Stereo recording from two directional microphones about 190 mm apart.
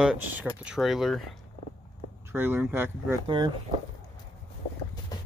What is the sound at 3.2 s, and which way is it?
Speech, 25° right (ahead or behind).